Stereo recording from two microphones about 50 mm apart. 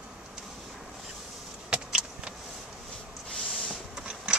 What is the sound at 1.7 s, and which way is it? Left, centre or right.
Vehicle, centre.